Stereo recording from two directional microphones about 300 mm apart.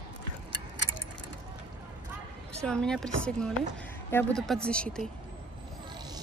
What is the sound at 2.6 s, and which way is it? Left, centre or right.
Speech, centre.